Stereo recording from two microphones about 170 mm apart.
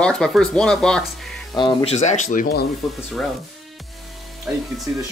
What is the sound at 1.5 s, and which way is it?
Speech, 25° left (ahead or behind).